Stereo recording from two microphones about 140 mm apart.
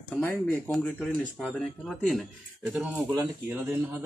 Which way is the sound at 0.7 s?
Centre (ahead or behind).